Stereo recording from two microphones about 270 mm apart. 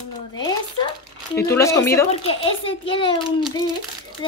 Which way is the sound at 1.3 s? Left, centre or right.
Centre.